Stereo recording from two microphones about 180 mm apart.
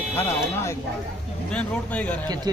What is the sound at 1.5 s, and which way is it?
Speech, 5° left (ahead or behind).